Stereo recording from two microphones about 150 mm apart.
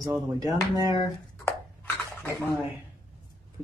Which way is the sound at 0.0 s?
25° right (ahead or behind).